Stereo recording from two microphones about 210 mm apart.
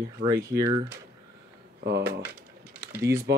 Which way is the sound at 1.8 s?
55° right (ahead or behind).